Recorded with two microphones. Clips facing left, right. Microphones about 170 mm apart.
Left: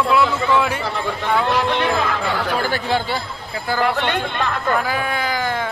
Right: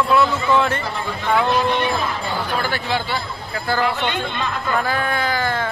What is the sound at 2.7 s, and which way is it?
Speech, 45° left (ahead or behind).